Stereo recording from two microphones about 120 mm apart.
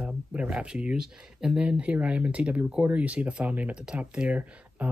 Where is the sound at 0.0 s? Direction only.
10° right (ahead or behind).